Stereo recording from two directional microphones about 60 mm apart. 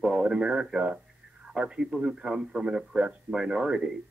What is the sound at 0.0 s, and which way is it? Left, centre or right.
Speech, centre.